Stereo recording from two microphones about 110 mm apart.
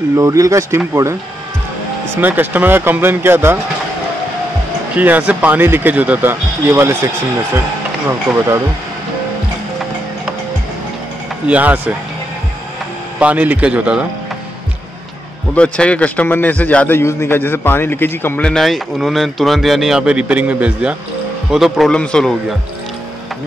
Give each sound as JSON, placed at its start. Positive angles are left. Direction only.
{"t": 0.1, "sound": "speech", "side_deg": -30}
{"t": 2.1, "sound": "speech", "side_deg": -15}
{"t": 4.9, "sound": "speech", "side_deg": -15}
{"t": 8.1, "sound": "speech", "side_deg": -25}
{"t": 11.4, "sound": "speech", "side_deg": -15}
{"t": 13.2, "sound": "speech", "side_deg": -15}
{"t": 15.5, "sound": "a man's voice", "side_deg": 10}
{"t": 18.5, "sound": "a man's voice", "side_deg": 0}